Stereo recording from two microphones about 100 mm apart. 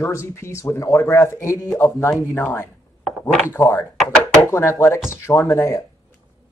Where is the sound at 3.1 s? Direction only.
5° left (ahead or behind).